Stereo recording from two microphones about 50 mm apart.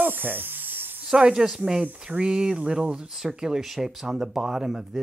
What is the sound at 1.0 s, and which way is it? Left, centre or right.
Speech, centre.